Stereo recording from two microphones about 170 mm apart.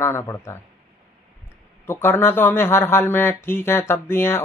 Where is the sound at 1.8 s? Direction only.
15° left (ahead or behind).